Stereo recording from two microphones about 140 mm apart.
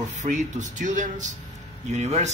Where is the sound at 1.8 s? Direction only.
55° right (ahead or behind).